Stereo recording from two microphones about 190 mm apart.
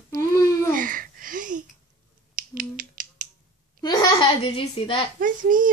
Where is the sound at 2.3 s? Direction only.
45° right (ahead or behind).